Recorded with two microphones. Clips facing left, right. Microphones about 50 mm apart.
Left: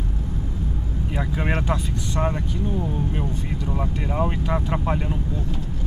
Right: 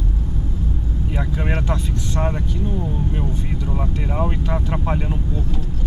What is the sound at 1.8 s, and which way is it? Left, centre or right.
Speech, centre.